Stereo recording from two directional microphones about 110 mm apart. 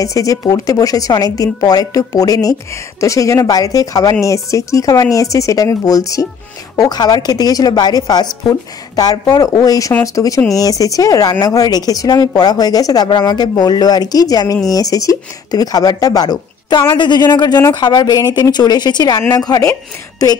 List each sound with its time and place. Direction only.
0.0 s speech: 30° left (ahead or behind)